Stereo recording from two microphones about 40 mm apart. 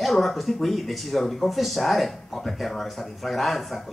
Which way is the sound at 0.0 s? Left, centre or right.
Centre.